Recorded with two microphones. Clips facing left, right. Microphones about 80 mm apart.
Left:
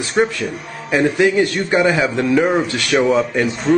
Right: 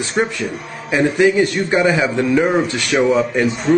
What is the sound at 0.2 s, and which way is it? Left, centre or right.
Speech, centre.